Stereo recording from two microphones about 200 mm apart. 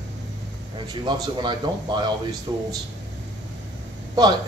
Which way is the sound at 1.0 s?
20° right (ahead or behind).